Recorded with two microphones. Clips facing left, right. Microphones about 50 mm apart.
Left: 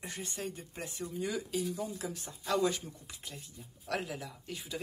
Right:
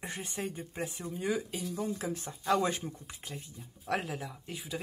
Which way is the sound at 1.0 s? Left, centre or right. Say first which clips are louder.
Right 2 dB; right.